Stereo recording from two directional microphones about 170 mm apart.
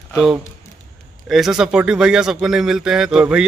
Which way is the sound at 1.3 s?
5° right (ahead or behind).